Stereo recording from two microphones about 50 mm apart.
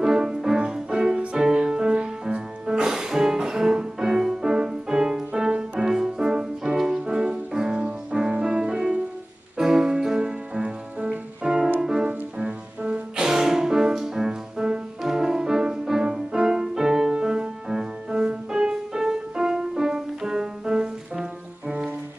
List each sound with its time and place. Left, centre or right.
0.0 s music: centre